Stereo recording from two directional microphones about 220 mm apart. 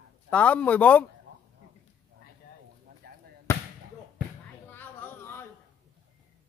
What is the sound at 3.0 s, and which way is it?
Basketball bounce, 40° right (ahead or behind).